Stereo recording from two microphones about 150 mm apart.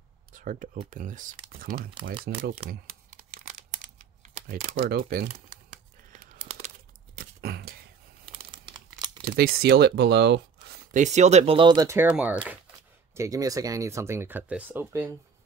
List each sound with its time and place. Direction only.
0.3 s speech: 60° right (ahead or behind)
2.2 s speech: 85° right
3.1 s crumpling: 60° right (ahead or behind)
4.5 s speech: 80° right
6.4 s a sound: 45° right (ahead or behind)
7.2 s a sound: 90° right
8.3 s crumpling: 35° right (ahead or behind)
9.2 s speech: 90° right
10.7 s speech: 60° right (ahead or behind); by 12.4 s 10° right (ahead or behind)
13.1 s speech: 20° right (ahead or behind)